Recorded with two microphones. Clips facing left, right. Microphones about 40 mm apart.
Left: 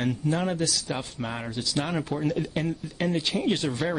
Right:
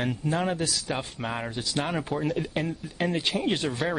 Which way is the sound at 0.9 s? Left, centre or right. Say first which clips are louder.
Right 1 dB; centre.